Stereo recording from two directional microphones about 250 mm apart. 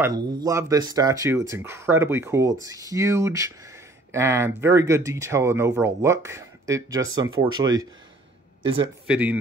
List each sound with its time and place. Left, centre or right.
0.0 s speech: centre
9.0 s speech: centre